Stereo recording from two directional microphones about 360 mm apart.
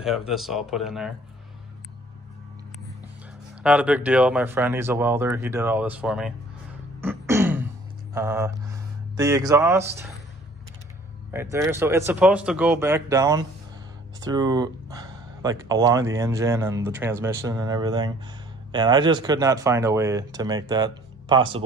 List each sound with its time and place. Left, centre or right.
0.3 s speech: centre
3.6 s speech: centre
7.0 s a sound: centre
8.1 s speech: centre
11.3 s speech: centre